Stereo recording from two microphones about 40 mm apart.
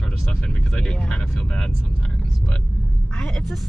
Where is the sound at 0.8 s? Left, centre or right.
Left.